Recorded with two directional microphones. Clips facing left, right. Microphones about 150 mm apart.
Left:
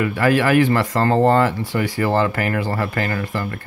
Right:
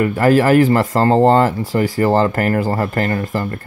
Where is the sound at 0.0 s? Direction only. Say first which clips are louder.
Right 4 dB; 40° right (ahead or behind).